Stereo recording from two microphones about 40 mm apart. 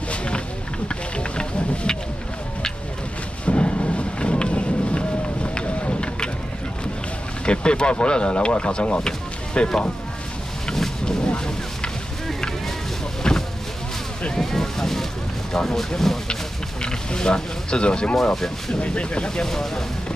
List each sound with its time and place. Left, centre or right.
0.1 s a sound: left
3.4 s a sound: left
7.4 s speech: left
10.7 s a sound: centre
13.2 s vehicle: centre
14.3 s boat: centre
15.5 s speech: centre
16.8 s speech: left
18.3 s speech: centre
18.8 s speech: left
19.4 s speech: centre